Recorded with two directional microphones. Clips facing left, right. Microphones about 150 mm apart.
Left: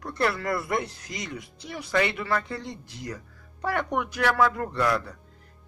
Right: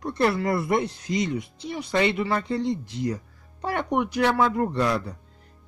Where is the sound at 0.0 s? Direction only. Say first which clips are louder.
Right 4 dB; 25° right (ahead or behind).